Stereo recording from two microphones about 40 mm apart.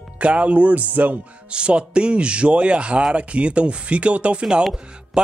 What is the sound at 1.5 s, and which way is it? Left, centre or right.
Speech, right.